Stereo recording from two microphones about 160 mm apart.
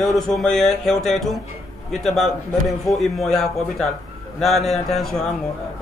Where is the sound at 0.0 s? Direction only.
Centre (ahead or behind).